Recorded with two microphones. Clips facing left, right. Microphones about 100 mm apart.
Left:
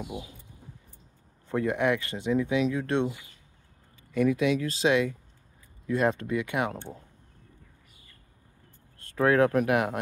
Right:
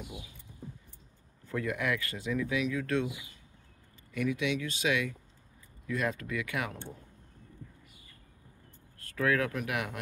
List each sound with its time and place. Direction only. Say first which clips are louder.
0.0 s speech: left 8 dB; 35° left (ahead or behind)
1.5 s speech: left 7 dB; 30° left (ahead or behind)
4.1 s speech: left 7 dB; 35° left (ahead or behind)
9.0 s speech: left 7 dB; 30° left (ahead or behind)